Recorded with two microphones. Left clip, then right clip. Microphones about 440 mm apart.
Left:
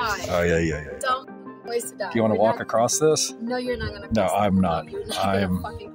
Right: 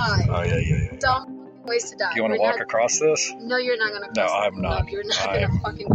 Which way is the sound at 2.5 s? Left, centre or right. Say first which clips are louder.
Right 1 dB; left.